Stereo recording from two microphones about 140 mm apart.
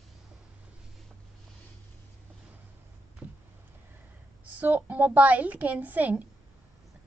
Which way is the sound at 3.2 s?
10° right (ahead or behind).